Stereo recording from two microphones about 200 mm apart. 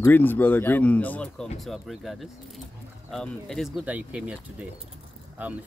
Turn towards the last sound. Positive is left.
turn(degrees=-10)  # may be behind; listen again after turning